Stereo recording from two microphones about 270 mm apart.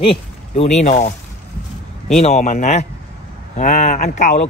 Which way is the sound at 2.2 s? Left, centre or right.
Left.